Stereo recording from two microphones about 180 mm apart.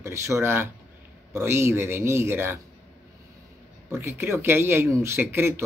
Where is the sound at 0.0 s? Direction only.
15° right (ahead or behind).